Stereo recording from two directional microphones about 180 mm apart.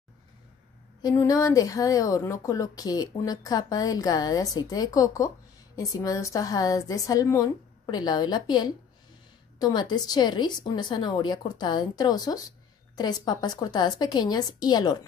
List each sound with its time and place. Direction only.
1.0 s speech: 20° left (ahead or behind)